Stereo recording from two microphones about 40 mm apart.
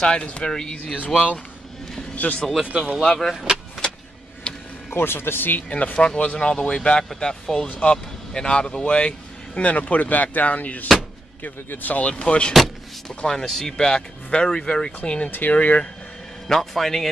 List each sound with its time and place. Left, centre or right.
0.0 s a man's voice: left
0.9 s speech: left
3.0 s a man's voice: centre
4.5 s a sound: left
4.9 s a man's voice: left
5.7 s speech: left
5.9 s speech: left
7.6 s speech: left
7.9 s speech: centre; by 12.0 s left
12.0 s a man's voice: left; by 13.7 s centre
13.7 s speech: left
15.0 s speech: left
16.4 s a man's voice: centre